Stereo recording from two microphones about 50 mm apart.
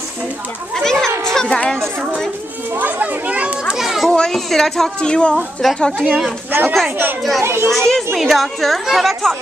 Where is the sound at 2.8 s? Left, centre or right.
Right.